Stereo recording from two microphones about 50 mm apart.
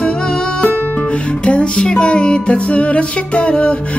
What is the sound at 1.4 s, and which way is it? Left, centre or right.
Music, left.